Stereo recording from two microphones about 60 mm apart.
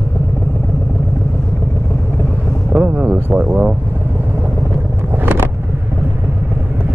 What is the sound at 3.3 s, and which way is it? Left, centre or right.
Speech, centre.